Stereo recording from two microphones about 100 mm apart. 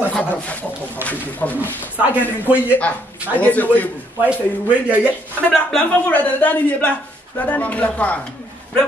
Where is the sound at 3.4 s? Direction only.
15° left (ahead or behind).